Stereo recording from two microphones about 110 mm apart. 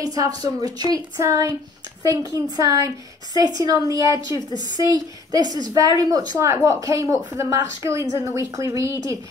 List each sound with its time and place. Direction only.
0.0 s a woman's voice: 35° right (ahead or behind)